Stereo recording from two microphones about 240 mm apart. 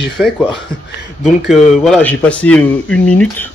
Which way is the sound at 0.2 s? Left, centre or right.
Centre.